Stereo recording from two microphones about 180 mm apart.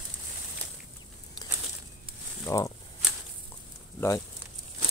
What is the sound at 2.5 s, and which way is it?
Speech, 20° left (ahead or behind).